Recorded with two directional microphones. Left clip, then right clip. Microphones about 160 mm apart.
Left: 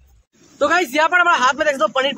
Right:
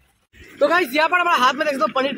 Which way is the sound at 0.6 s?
30° left (ahead or behind).